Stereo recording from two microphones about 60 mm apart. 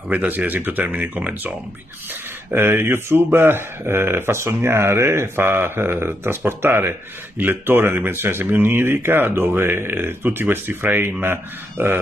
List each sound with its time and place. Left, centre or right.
0.1 s speech: right
2.5 s speech: right